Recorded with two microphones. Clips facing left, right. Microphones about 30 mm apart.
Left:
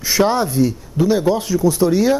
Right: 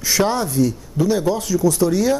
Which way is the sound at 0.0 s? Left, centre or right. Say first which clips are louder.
Left 3 dB; centre.